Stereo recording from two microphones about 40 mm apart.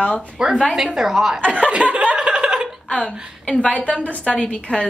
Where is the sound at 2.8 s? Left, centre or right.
Centre.